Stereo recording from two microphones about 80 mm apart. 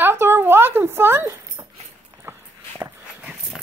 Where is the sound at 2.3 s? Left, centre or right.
Right.